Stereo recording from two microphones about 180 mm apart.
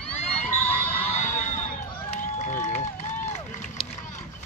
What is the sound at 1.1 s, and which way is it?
Run, 40° left (ahead or behind).